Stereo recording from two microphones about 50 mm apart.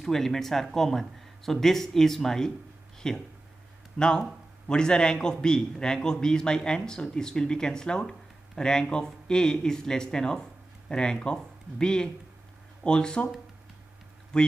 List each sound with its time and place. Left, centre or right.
0.0 s a man's voice: centre
14.3 s a man's voice: centre